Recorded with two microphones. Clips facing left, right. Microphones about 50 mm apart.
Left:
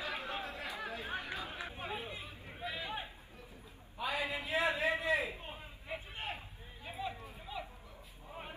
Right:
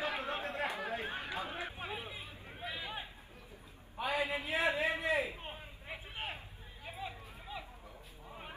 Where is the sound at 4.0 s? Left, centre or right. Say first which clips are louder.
Right 2 dB; right.